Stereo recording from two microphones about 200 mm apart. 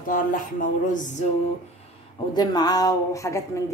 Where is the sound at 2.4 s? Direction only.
20° left (ahead or behind).